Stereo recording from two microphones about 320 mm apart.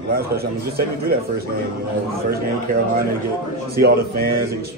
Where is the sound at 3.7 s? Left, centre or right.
Right.